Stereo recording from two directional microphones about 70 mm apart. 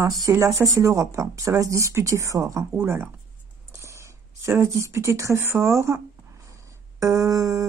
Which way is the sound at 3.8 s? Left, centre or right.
Right.